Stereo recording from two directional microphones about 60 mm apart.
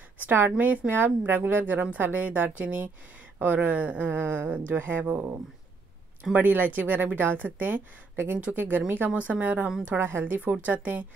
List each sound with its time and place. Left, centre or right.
0.2 s speech: right
6.3 s speech: right
9.8 s speech: right
10.2 s speech: right